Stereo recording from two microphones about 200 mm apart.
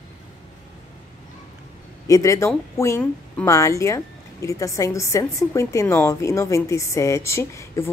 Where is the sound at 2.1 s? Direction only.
15° left (ahead or behind).